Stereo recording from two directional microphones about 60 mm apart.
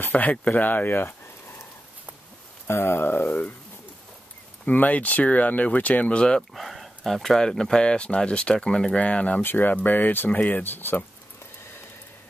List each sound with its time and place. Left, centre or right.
0.0 s speech: left
2.6 s speech: left
4.6 s speech: left
6.5 s speech: centre; by 9.4 s left
9.4 s speech: left